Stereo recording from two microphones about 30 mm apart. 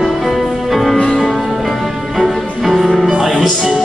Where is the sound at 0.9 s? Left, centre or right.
Left.